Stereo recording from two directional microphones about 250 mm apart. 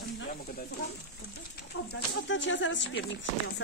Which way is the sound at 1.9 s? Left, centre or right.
Left.